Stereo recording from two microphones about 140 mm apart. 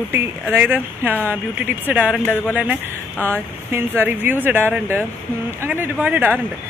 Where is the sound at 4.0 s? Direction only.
15° right (ahead or behind).